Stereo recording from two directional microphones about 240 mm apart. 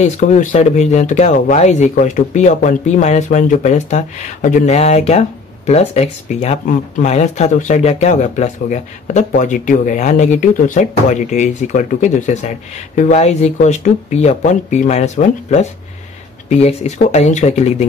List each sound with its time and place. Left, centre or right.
0.0 s speech: left